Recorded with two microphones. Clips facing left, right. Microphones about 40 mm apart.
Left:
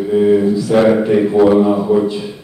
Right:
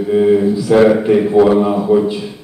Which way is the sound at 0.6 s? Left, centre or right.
Centre.